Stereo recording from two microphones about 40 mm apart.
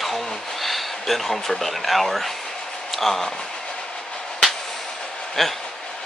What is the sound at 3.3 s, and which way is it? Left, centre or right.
Train, centre.